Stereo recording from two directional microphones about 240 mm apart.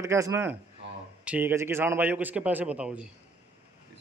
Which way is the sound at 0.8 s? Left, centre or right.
Right.